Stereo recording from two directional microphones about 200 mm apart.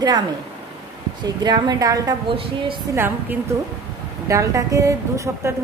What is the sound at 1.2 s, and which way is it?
A woman's voice, 20° right (ahead or behind).